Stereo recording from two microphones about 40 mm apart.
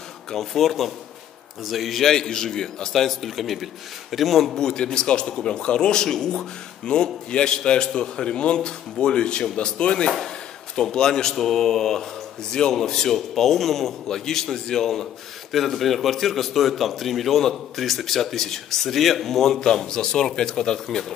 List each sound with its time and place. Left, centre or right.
0.3 s a man's voice: centre
2.0 s a man's voice: centre
2.9 s a man's voice: centre
4.6 s a man's voice: centre